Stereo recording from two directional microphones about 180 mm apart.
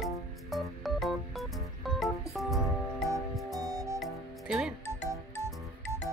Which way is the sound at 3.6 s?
20° right (ahead or behind).